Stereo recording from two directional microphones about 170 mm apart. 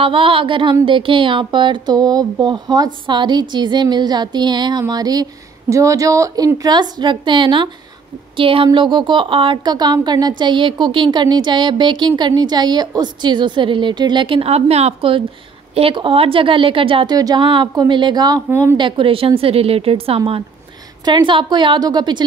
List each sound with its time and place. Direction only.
0.0 s speech: 30° right (ahead or behind)
18.8 s a woman's voice: 30° right (ahead or behind)